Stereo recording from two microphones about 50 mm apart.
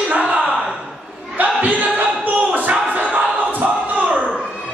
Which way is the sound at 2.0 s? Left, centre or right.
Right.